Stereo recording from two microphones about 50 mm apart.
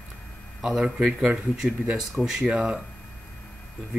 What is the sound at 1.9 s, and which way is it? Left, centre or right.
Speech, centre.